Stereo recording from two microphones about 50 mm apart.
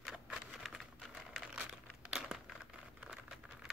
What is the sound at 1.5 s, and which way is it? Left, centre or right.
Crumpling, centre.